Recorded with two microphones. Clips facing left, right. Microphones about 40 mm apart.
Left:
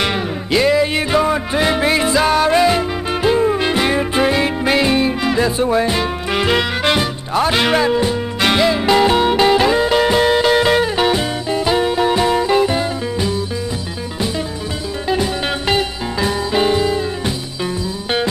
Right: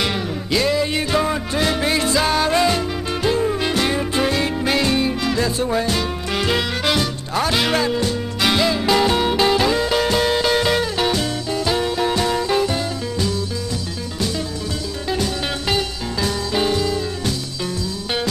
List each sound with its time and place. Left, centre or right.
0.0 s music: centre
15.7 s music: left